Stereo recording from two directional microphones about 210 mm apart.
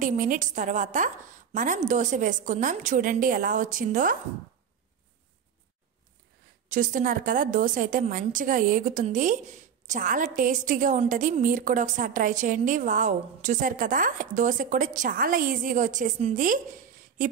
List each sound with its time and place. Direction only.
0.0 s a woman's voice: 40° right (ahead or behind)
6.7 s a woman's voice: 40° right (ahead or behind)